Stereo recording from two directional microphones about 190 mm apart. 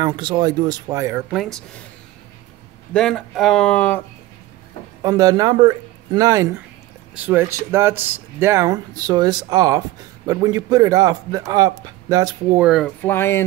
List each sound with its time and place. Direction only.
0.0 s speech: 25° right (ahead or behind)
1.3 s speech: centre (ahead or behind)
2.9 s speech: 5° left (ahead or behind)
5.0 s speech: 20° right (ahead or behind)
12.5 s speech: 5° right (ahead or behind)
13.0 s speech: 10° left (ahead or behind)